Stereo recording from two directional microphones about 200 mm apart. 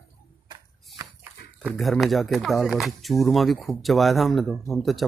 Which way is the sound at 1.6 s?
Centre (ahead or behind).